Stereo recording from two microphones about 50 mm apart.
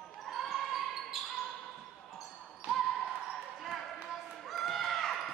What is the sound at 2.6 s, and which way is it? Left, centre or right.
Basketball bounce, right.